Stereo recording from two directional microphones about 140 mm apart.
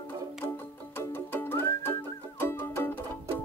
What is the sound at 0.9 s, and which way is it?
Music, 15° left (ahead or behind).